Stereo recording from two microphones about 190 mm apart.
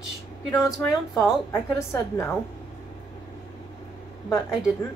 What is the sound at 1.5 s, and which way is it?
Speech, 15° left (ahead or behind).